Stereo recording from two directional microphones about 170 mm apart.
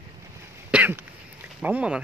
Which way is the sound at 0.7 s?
10° right (ahead or behind).